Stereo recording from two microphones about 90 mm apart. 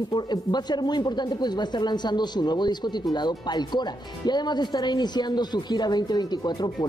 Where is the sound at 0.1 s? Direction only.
50° left (ahead or behind).